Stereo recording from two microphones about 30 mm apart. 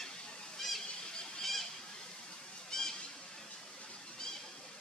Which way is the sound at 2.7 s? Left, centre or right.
Centre.